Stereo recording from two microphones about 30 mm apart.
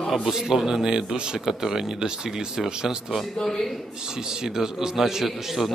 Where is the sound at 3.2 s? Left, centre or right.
Centre.